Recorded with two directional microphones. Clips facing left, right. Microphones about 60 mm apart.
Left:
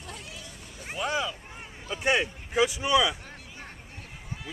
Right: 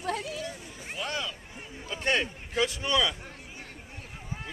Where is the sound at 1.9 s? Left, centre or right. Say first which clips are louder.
Left 2 dB; centre.